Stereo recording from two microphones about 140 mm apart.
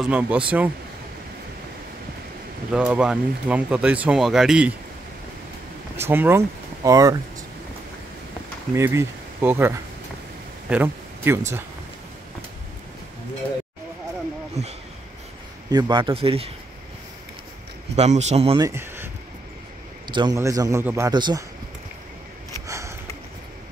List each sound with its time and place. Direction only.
0.0 s speech: 10° right (ahead or behind)
2.7 s speech: 5° right (ahead or behind)
5.9 s speech: 15° right (ahead or behind)
8.7 s speech: 20° right (ahead or behind)
14.6 s speech: 55° right (ahead or behind)
15.7 s speech: 35° right (ahead or behind)
17.9 s speech: 50° right (ahead or behind)
18.6 s speech: 20° right (ahead or behind)
20.1 s a man's voice: 30° right (ahead or behind)
21.1 s speech: 30° right (ahead or behind)
22.7 s sniff: 20° right (ahead or behind)